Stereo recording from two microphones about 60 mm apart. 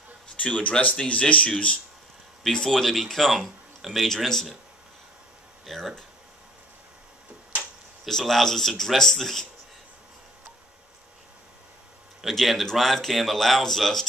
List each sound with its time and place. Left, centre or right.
0.4 s speech: left
2.4 s speech: centre
5.7 s speech: centre
8.0 s speech: centre
12.2 s speech: centre